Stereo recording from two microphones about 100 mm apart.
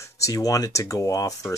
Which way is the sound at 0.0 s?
35° left (ahead or behind).